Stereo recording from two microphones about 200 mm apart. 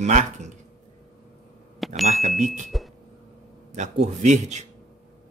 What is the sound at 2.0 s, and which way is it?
Speech, 35° right (ahead or behind).